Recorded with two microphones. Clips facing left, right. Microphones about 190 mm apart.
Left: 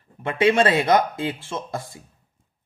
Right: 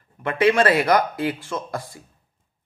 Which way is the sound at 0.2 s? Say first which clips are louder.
Even; 25° left (ahead or behind).